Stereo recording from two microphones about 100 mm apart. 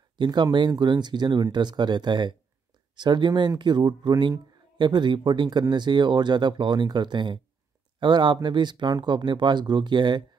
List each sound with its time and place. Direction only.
0.2 s speech: 50° right (ahead or behind)